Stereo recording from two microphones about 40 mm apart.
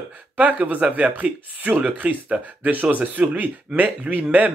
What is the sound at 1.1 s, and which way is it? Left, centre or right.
Speech, right.